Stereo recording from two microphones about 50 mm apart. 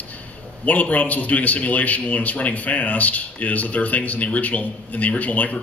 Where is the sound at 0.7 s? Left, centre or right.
Left.